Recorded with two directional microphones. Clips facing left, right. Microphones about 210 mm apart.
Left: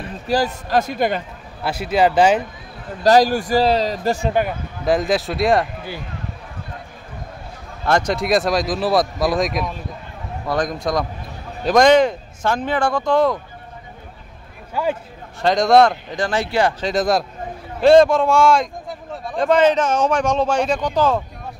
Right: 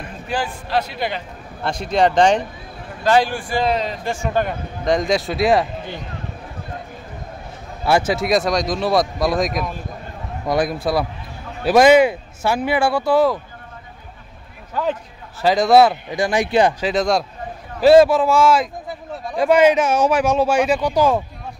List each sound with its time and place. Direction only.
0.0 s basketball bounce: 40° left (ahead or behind)
0.7 s speech: 45° left (ahead or behind)
1.6 s speech: 5° left (ahead or behind)
3.0 s a man's voice: 40° left (ahead or behind)
4.5 s speech: 5° left (ahead or behind)
7.8 s speech: 5° right (ahead or behind)
10.4 s speech: 10° right (ahead or behind)
14.7 s speech: 10° left (ahead or behind)
15.4 s speech: 5° right (ahead or behind)
16.8 s speech: centre (ahead or behind)